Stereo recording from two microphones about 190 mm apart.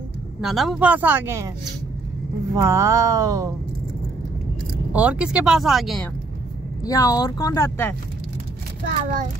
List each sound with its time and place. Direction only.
0.4 s speech: centre (ahead or behind)
2.5 s speech: 15° right (ahead or behind)
4.9 s speech: 5° right (ahead or behind)
6.8 s speech: 20° left (ahead or behind)